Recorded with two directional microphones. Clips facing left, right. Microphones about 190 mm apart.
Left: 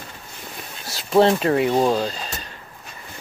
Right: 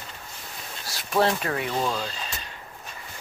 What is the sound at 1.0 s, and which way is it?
Speech, 25° left (ahead or behind).